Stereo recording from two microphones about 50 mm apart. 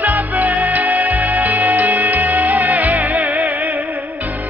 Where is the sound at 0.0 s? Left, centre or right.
Right.